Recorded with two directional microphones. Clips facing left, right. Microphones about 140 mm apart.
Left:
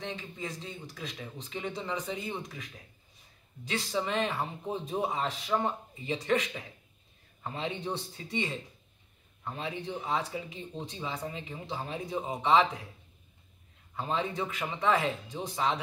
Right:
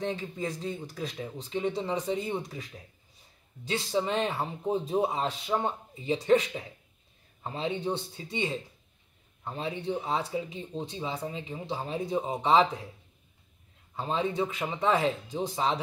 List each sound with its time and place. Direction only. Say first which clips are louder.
0.0 s speech: right 6 dB; 40° right (ahead or behind)
1.4 s speech: right 6 dB; 30° right (ahead or behind)
3.6 s speech: right 3 dB; 30° right (ahead or behind)
13.9 s speech: right 3 dB; 25° right (ahead or behind)